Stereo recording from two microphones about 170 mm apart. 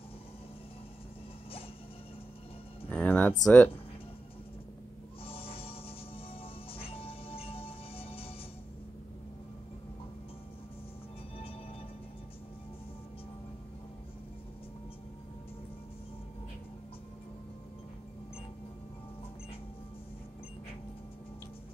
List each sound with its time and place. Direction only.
2.9 s music: 10° left (ahead or behind)
3.4 s speech: 10° left (ahead or behind)
5.2 s music: 35° left (ahead or behind)